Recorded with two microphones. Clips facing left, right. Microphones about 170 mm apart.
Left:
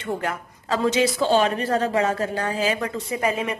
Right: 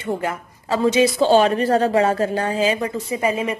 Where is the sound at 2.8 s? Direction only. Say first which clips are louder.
Right 3 dB; centre (ahead or behind).